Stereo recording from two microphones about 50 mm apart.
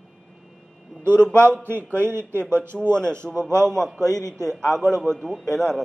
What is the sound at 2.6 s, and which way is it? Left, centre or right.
Speech, right.